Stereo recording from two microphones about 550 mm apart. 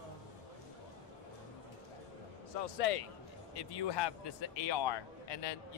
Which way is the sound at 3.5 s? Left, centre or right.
Left.